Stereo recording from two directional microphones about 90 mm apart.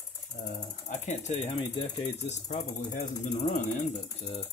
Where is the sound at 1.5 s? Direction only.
65° left (ahead or behind).